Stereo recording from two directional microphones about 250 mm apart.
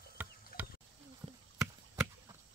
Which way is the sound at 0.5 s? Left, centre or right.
Left.